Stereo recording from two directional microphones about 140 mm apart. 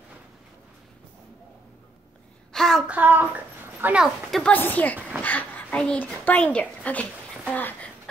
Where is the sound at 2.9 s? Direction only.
15° right (ahead or behind).